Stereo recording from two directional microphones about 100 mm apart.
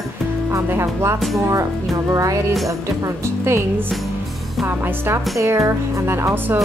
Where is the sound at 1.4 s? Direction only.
35° right (ahead or behind).